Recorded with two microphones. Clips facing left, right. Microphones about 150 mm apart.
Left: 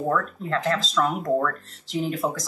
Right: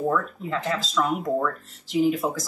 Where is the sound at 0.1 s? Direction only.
5° right (ahead or behind).